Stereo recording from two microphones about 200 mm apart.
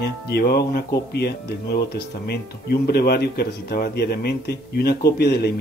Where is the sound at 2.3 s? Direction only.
50° left (ahead or behind).